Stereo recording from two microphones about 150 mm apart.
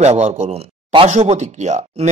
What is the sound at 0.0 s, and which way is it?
Speech, 50° right (ahead or behind).